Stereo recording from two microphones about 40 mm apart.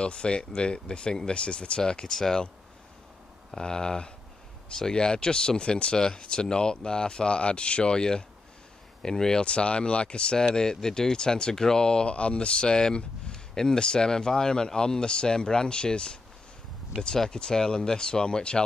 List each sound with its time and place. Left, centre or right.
0.0 s speech: left
3.5 s speech: centre